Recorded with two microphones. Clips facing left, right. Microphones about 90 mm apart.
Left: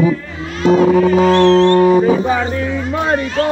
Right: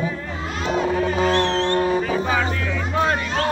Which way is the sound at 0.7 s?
90° left.